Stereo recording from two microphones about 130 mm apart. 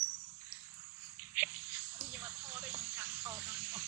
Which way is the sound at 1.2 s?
15° right (ahead or behind).